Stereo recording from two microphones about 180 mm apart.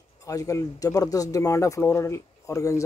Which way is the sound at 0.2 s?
20° left (ahead or behind).